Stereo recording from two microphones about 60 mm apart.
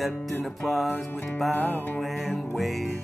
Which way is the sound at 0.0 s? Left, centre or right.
Centre.